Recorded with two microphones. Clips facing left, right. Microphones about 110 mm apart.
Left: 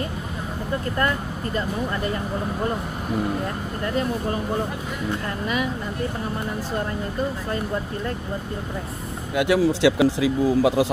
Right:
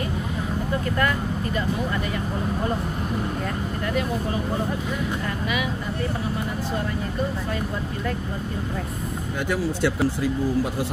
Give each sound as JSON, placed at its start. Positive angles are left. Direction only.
{"t": 9.4, "sound": "speech", "side_deg": 80}